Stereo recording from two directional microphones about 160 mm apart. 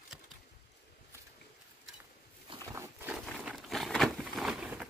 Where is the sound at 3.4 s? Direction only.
Centre (ahead or behind).